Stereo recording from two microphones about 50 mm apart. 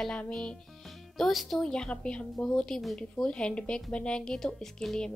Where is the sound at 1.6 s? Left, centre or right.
Centre.